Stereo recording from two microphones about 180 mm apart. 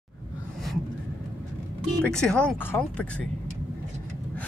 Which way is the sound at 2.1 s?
5° left (ahead or behind).